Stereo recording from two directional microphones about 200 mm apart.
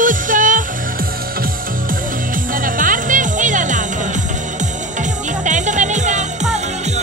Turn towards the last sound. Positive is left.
turn(degrees=-35)  # may be behind; listen again after turning